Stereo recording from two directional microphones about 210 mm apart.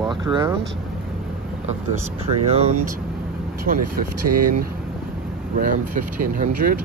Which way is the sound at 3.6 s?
40° right (ahead or behind).